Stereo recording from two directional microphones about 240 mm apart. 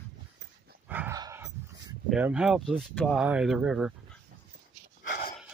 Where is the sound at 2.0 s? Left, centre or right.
Centre.